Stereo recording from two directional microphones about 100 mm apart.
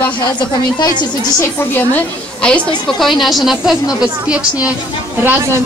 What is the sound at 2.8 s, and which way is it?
A woman's voice, centre (ahead or behind).